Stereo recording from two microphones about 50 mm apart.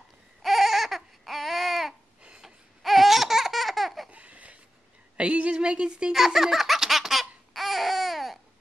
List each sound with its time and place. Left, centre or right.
0.4 s baby cry: centre
2.4 s laughter: centre
4.1 s a sound: right
6.1 s laughter: centre